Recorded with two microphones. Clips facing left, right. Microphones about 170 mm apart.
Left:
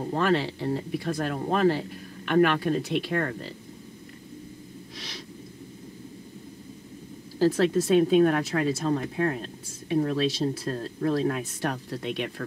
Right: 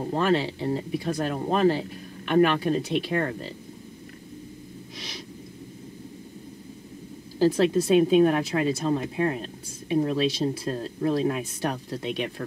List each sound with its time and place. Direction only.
0.2 s speech: 25° right (ahead or behind)
7.3 s speech: 20° right (ahead or behind)